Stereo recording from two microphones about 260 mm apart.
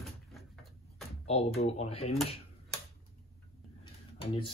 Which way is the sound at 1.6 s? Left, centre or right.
Left.